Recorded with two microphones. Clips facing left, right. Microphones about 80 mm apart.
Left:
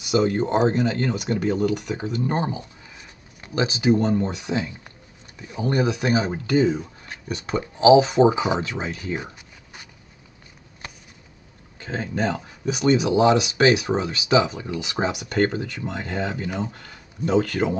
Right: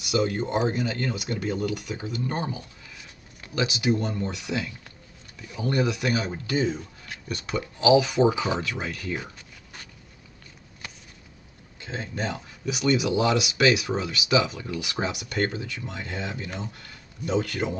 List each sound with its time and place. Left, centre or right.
0.0 s speech: left
2.1 s a sound: left
4.0 s speech: left
6.5 s speech: left
7.1 s a sound: left
7.4 s speech: left
11.8 s speech: left
12.6 s speech: left